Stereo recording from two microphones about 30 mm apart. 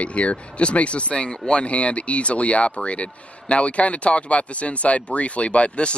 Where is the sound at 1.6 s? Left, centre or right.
Left.